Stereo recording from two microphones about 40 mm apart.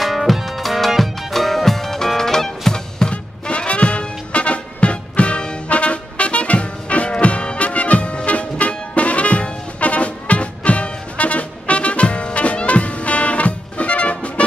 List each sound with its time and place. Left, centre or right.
0.0 s music: centre; by 14.4 s left